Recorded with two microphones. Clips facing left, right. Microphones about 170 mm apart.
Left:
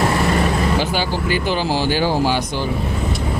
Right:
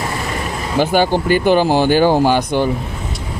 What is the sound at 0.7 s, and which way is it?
Speech, 50° right (ahead or behind).